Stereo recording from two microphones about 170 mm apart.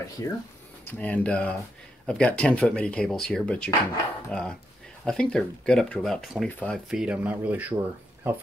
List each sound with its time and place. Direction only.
0.2 s speech: 20° left (ahead or behind); by 8.4 s 15° right (ahead or behind)